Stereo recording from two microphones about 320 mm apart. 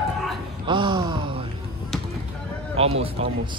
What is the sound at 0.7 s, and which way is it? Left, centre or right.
Music, centre.